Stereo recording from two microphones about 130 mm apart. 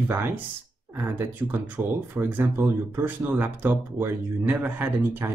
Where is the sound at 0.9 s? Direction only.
15° right (ahead or behind).